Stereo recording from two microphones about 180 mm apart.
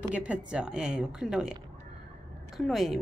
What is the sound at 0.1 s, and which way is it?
A woman's voice, 5° right (ahead or behind).